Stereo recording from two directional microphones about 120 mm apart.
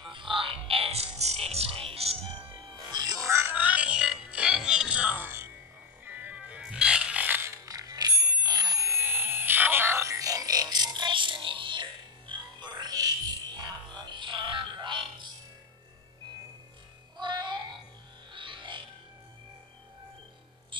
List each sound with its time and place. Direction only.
0.1 s music: 45° right (ahead or behind)
2.9 s music: 35° right (ahead or behind)
3.3 s music: 20° right (ahead or behind); by 15.2 s 40° right (ahead or behind)
17.2 s music: 40° right (ahead or behind)